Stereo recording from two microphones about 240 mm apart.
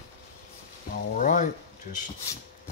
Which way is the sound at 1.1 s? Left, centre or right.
Left.